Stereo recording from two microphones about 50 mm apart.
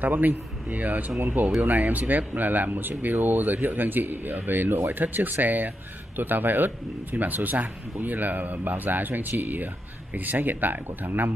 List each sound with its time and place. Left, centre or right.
0.0 s speech: right